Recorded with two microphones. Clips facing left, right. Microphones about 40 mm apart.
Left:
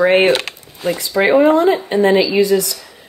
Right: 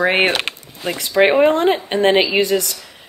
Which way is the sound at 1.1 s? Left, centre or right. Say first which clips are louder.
Left 1 dB; right.